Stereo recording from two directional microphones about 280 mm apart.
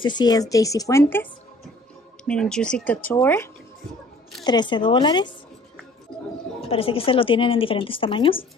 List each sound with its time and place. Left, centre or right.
0.0 s speech: centre
4.5 s speech: centre
6.6 s a woman's voice: centre